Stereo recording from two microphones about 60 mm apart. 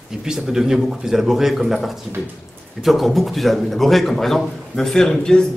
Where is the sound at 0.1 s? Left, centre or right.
Centre.